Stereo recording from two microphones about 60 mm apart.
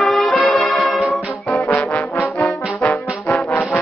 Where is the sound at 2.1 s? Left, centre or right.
Left.